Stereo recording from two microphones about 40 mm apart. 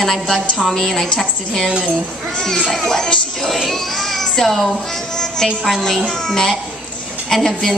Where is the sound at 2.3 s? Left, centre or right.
Centre.